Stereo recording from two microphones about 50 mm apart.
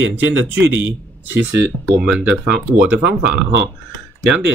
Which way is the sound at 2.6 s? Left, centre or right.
Right.